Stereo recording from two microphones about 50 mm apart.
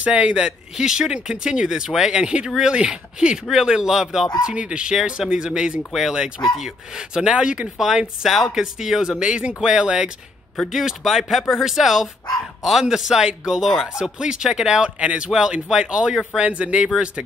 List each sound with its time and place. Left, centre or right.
0.0 s speech: right
4.5 s speech: right
7.7 s speech: centre